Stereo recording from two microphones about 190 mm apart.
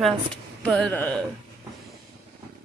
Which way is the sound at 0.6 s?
5° left (ahead or behind).